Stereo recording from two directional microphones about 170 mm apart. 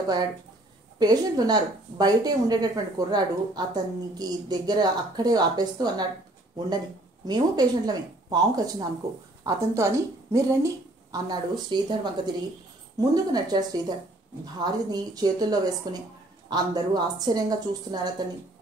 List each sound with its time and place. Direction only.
0.9 s a woman's voice: 25° right (ahead or behind)
7.2 s a woman's voice: 25° right (ahead or behind)
13.1 s a woman's voice: 25° right (ahead or behind)